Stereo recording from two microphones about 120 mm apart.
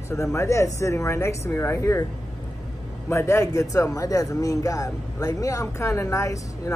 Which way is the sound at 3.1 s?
25° left (ahead or behind).